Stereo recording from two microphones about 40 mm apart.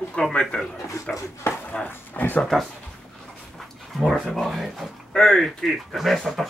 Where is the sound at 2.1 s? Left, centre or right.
Left.